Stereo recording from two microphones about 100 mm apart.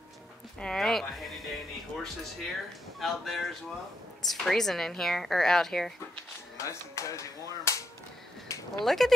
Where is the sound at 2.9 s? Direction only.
Centre (ahead or behind).